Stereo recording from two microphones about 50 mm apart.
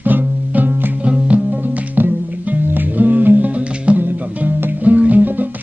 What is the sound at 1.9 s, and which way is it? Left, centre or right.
Music, right.